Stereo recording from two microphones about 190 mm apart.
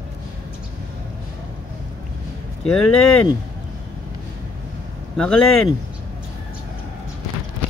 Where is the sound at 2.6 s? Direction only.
5° left (ahead or behind).